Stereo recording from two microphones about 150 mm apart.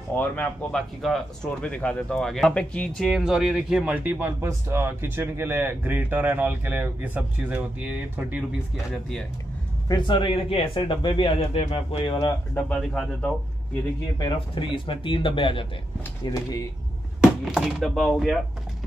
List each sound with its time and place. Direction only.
0.1 s speech: 10° left (ahead or behind)
9.8 s speech: 30° left (ahead or behind)
12.5 s speech: 5° left (ahead or behind)
14.1 s speech: 30° left (ahead or behind)
17.2 s speech: centre (ahead or behind)